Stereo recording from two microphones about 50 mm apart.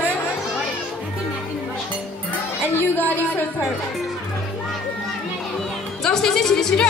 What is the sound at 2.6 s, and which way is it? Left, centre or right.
Speech, left.